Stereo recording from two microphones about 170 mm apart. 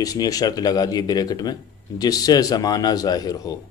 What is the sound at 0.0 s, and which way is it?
Speech, 20° left (ahead or behind).